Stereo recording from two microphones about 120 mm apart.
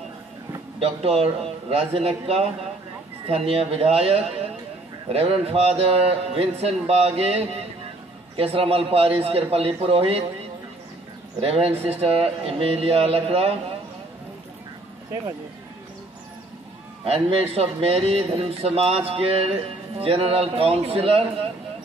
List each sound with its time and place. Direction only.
0.7 s a man's voice: 55° right (ahead or behind)
11.4 s a man's voice: 55° right (ahead or behind)
17.0 s a man's voice: 55° right (ahead or behind)